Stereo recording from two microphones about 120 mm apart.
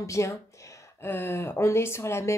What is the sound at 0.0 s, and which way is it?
Speech, 25° left (ahead or behind).